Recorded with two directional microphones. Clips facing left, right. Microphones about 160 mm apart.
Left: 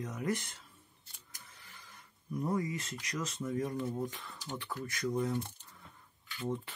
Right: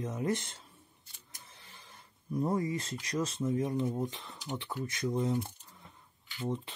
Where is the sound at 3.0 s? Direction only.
30° right (ahead or behind).